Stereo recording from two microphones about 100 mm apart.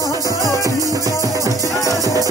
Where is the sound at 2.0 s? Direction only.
35° right (ahead or behind).